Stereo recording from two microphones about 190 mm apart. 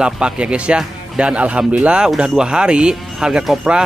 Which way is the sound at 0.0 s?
5° right (ahead or behind).